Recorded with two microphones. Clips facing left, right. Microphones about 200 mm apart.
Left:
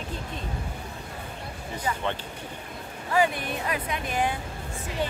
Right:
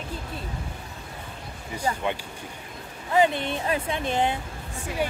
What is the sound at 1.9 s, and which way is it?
Speech, 35° right (ahead or behind).